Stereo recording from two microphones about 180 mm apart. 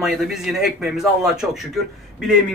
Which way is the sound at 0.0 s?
Centre (ahead or behind).